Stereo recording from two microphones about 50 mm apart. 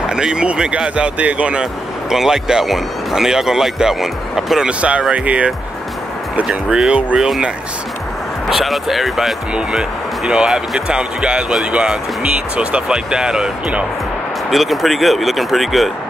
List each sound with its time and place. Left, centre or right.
0.0 s speech: centre
1.6 s speech: centre
4.6 s speech: right
6.9 s speech: right
7.2 s speech: centre
8.5 s speech: centre
9.7 s speech: centre
14.5 s speech: centre